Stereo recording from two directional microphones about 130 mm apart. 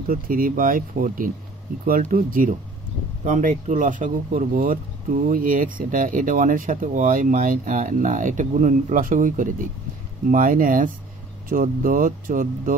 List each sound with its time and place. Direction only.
0.1 s speech: 90° right
3.3 s speech: 70° right (ahead or behind); by 12.7 s 90° right